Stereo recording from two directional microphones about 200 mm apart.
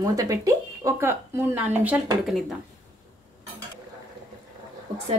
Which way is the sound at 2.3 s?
Centre (ahead or behind).